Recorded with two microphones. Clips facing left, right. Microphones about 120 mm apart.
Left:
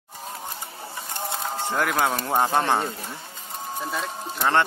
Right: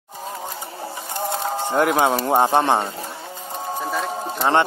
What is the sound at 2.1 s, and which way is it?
Speech, 25° right (ahead or behind).